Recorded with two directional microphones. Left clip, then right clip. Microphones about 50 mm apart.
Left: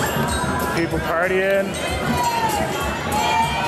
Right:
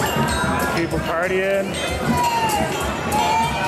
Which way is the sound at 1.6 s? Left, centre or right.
Centre.